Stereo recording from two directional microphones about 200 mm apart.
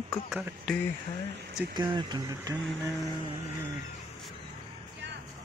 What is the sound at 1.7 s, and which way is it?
Speech, 25° right (ahead or behind).